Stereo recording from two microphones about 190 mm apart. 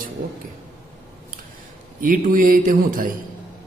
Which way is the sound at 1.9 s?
45° right (ahead or behind).